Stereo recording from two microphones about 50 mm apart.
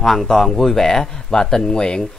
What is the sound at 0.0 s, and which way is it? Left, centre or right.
Speech, centre.